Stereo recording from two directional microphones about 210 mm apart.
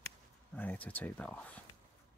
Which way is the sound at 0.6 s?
10° left (ahead or behind).